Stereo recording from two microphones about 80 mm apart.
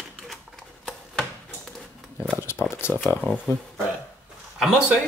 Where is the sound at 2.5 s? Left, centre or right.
Left.